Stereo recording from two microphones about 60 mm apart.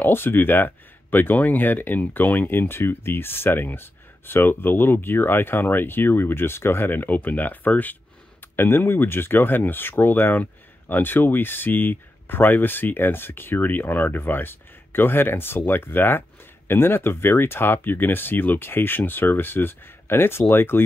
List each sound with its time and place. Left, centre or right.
0.0 s speech: left
8.5 s speech: left